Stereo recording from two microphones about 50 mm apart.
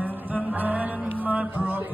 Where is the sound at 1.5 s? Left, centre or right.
Right.